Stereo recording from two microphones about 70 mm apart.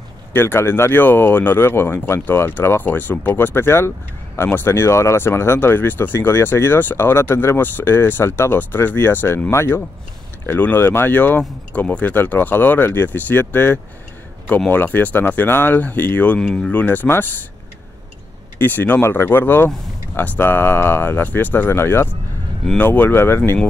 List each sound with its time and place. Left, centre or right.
0.3 s speech: left
18.6 s speech: left
22.8 s speech: left